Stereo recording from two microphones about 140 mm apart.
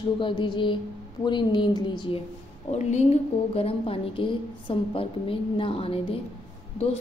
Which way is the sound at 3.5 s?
45° left (ahead or behind).